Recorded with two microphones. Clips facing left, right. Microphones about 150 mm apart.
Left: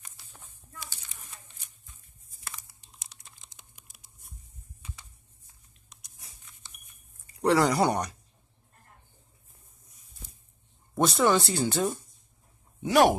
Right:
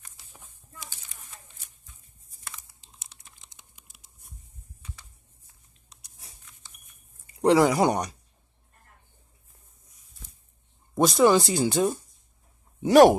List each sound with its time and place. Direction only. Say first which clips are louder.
3.1 s computer keyboard: even; 20° right (ahead or behind)
5.9 s a sound: right 1 dB; 30° right (ahead or behind)
7.6 s speech: right 3 dB; 15° right (ahead or behind)
11.0 s speech: right 4 dB; 10° right (ahead or behind)
12.8 s speech: right 6 dB; 40° right (ahead or behind)